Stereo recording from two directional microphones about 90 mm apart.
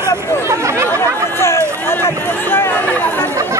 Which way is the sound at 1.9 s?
25° left (ahead or behind).